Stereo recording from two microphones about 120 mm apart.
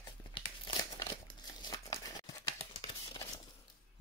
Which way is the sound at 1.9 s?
30° left (ahead or behind).